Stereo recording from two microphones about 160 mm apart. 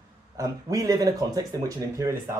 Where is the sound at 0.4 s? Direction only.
20° right (ahead or behind).